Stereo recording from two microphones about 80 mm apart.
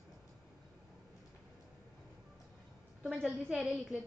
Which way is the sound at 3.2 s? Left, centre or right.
Centre.